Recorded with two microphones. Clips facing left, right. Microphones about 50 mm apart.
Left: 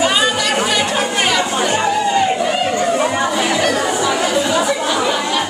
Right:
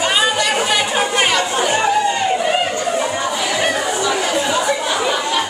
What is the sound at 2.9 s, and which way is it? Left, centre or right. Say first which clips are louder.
Chatter: left 3 dB; centre.